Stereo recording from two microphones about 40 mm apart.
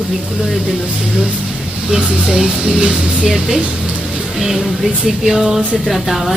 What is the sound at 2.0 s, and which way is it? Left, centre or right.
Speech, right.